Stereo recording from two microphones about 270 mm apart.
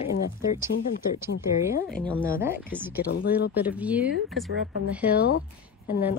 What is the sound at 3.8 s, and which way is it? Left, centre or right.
Speech, centre.